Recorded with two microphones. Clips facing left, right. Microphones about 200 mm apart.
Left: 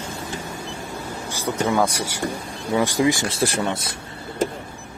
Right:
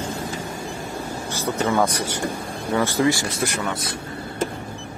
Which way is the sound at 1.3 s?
15° left (ahead or behind).